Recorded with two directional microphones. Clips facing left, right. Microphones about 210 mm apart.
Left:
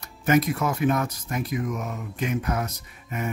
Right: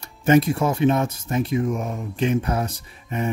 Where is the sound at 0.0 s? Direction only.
30° right (ahead or behind).